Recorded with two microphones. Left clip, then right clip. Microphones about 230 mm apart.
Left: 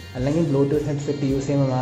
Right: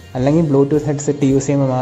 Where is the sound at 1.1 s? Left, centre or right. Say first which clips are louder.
Right 7 dB; right.